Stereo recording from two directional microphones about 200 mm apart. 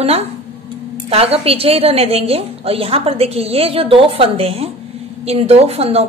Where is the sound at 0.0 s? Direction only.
30° right (ahead or behind).